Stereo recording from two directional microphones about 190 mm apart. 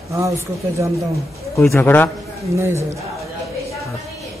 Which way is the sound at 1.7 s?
10° left (ahead or behind).